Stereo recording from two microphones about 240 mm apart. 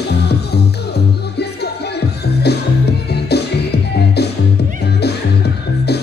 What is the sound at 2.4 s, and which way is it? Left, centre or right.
Music, left.